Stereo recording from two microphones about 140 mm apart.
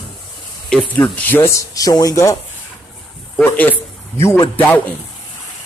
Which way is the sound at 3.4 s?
15° left (ahead or behind).